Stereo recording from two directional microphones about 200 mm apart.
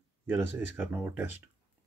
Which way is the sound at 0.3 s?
10° right (ahead or behind).